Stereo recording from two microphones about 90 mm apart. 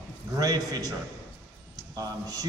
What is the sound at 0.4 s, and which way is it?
Speech, 45° right (ahead or behind).